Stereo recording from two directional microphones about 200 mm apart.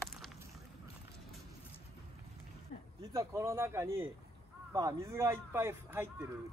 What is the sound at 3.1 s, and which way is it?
A man's voice, 15° right (ahead or behind).